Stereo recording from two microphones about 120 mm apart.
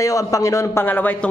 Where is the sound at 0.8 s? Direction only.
15° left (ahead or behind).